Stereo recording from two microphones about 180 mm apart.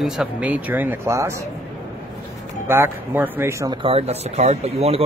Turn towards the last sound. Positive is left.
turn(degrees=-35)  # may be behind; listen again after turning